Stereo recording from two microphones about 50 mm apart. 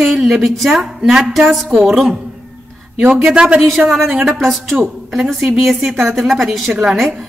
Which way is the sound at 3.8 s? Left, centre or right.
Centre.